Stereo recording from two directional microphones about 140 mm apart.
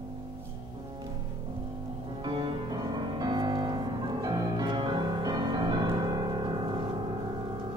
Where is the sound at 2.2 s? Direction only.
35° right (ahead or behind).